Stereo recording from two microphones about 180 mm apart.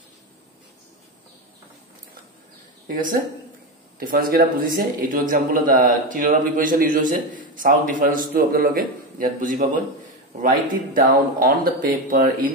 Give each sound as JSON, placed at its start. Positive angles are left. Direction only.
{"t": 2.9, "sound": "a man's voice", "side_deg": -50}